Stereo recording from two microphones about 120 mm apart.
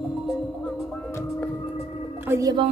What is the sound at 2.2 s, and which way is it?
Whale vocalization, 20° right (ahead or behind).